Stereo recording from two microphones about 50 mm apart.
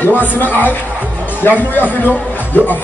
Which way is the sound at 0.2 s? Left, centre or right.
Left.